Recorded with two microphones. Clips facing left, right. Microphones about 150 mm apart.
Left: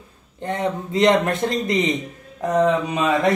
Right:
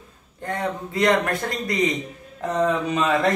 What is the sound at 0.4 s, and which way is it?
A man's voice, 25° left (ahead or behind).